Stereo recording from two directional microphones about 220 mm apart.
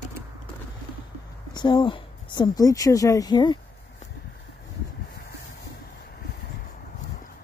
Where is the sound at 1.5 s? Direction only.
20° left (ahead or behind).